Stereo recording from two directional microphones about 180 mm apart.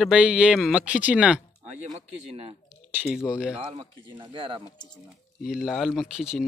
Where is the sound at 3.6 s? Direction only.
30° right (ahead or behind).